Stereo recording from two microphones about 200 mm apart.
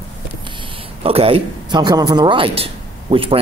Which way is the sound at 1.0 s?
30° right (ahead or behind).